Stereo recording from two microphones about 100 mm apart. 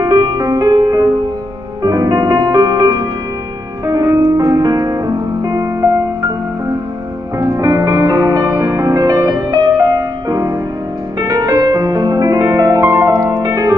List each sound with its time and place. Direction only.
0.0 s music: 45° right (ahead or behind)
7.3 s music: 30° right (ahead or behind)
8.8 s music: 40° right (ahead or behind)
11.1 s music: 40° right (ahead or behind)